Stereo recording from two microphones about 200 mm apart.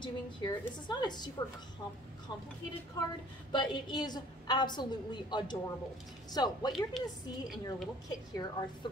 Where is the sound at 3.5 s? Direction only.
20° left (ahead or behind).